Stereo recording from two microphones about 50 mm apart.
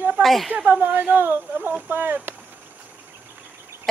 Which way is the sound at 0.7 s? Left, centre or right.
Right.